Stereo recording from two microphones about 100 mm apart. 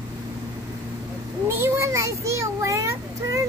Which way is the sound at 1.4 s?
25° right (ahead or behind).